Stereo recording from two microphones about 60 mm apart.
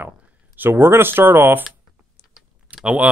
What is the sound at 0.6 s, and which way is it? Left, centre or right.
Speech, right.